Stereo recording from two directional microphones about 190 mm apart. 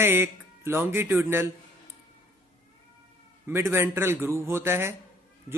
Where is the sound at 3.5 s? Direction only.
10° right (ahead or behind).